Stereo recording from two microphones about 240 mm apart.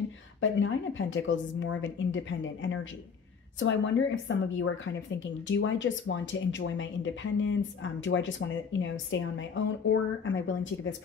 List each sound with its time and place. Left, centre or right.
0.4 s speech: left